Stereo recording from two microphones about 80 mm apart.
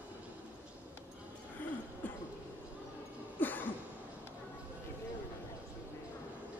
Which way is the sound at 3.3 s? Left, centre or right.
Left.